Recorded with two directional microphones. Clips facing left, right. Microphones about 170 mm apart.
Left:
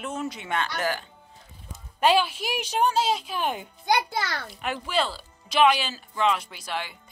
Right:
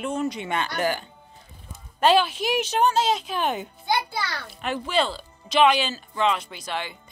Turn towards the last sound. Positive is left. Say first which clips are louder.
# right 2 dB
turn(degrees=5)  # may be behind; listen again after turning